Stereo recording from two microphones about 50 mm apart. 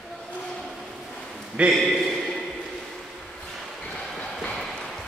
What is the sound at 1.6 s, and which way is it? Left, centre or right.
Speech, right.